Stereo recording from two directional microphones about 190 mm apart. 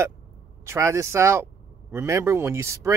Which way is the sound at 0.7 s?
15° right (ahead or behind).